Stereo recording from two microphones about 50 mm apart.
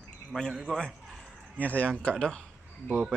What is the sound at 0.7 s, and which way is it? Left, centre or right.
Speech, centre.